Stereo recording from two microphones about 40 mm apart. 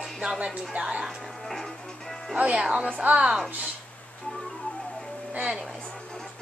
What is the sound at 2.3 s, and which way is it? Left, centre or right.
Speech, right.